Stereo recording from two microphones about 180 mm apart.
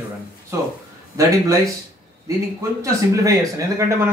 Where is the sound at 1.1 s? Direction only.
20° right (ahead or behind).